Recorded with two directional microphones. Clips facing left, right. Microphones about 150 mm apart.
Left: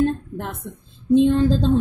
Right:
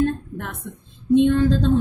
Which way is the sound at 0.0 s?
30° left (ahead or behind).